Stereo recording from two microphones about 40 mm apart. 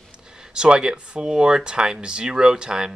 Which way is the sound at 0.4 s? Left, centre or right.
Right.